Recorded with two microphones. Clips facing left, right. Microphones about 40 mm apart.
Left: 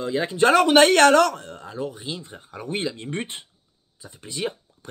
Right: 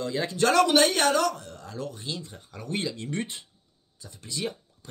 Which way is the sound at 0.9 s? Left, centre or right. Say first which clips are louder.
Left 8 dB; left.